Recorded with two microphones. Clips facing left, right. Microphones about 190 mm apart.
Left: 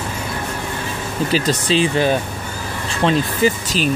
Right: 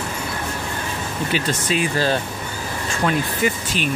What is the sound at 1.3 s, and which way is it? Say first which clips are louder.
Speech: left 5 dB; 35° left (ahead or behind).